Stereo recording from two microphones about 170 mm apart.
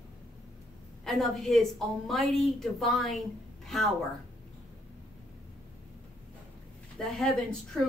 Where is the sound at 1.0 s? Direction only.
Centre (ahead or behind).